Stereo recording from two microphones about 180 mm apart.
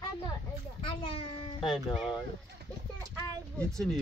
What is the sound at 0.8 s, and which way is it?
Speech, 30° left (ahead or behind).